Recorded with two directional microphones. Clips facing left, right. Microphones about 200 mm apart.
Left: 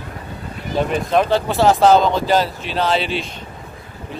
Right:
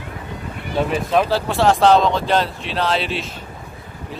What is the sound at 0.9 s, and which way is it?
Speech, centre (ahead or behind).